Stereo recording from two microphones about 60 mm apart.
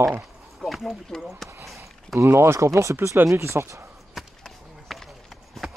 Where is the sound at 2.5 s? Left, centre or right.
Right.